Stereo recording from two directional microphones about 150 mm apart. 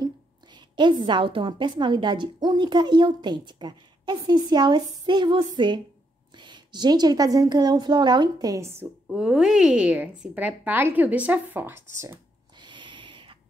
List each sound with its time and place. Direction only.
0.6 s a woman's voice: 30° right (ahead or behind)
9.1 s a woman's voice: 5° right (ahead or behind)
12.5 s a sound: 30° right (ahead or behind)